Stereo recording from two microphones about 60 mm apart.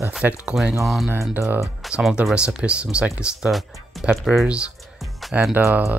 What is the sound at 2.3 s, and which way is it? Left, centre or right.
Speech, centre.